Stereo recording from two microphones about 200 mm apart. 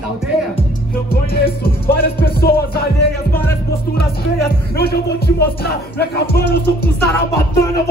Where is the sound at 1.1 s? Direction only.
50° left (ahead or behind).